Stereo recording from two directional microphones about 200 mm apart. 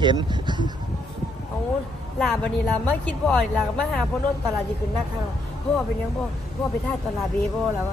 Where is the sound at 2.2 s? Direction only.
Centre (ahead or behind).